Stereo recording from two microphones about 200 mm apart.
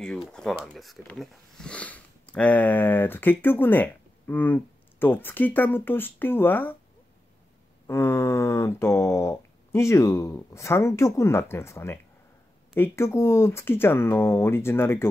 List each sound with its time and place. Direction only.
0.0 s speech: 5° left (ahead or behind)
7.8 s speech: 15° left (ahead or behind)